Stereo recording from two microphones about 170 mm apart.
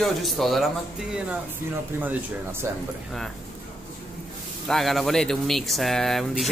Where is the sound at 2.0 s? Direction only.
15° right (ahead or behind).